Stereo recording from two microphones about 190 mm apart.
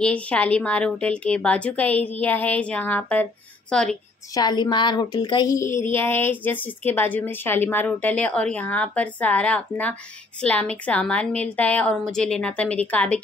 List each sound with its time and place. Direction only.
0.0 s a woman's voice: 5° left (ahead or behind)
4.3 s a woman's voice: 20° left (ahead or behind)